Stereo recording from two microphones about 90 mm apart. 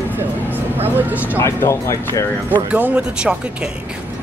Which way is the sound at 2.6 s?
15° right (ahead or behind).